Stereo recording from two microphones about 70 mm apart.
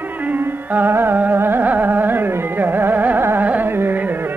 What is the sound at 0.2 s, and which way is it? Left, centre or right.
Carnatic music, right.